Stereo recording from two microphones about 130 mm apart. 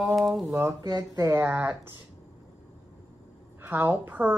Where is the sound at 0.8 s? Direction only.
30° right (ahead or behind); by 1.9 s 15° right (ahead or behind).